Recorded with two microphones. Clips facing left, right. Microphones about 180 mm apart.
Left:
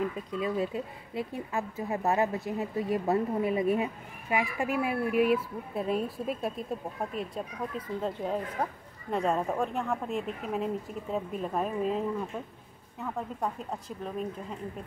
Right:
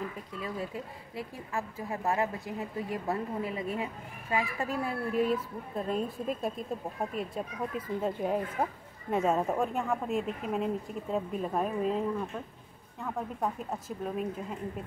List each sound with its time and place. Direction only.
0.3 s speech: 20° left (ahead or behind)
7.2 s speech: 5° right (ahead or behind)